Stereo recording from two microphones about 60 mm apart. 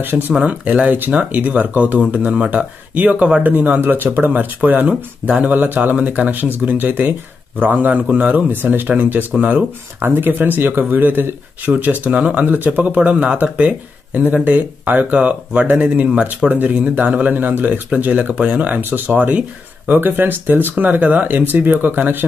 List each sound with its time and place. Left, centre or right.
0.5 s speech: right